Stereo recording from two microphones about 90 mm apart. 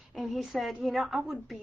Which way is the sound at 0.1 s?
Centre (ahead or behind).